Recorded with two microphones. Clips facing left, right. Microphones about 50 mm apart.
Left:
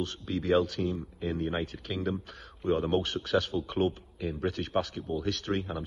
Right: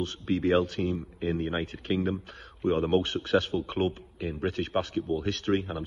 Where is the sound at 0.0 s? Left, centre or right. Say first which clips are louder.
Right 5 dB; right.